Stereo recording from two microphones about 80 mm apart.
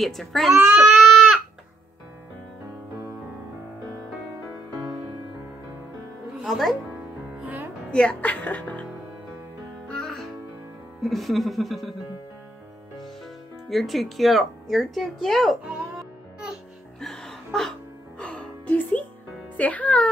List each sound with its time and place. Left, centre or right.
0.0 s speech: centre
0.7 s baby cry: centre
6.4 s speech: centre
7.3 s music: right
7.9 s speech: centre
11.0 s speech: centre
13.7 s speech: centre
17.0 s music: centre
19.5 s speech: centre